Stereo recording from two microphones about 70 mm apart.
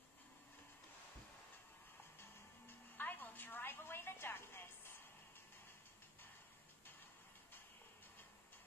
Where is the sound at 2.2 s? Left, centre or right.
Left.